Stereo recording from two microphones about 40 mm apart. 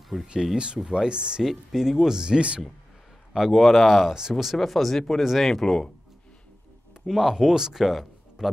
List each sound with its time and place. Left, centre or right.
0.2 s speech: centre
1.4 s speech: centre; by 2.6 s right
3.3 s speech: centre
4.1 s speech: centre
4.6 s speech: centre
7.1 s speech: centre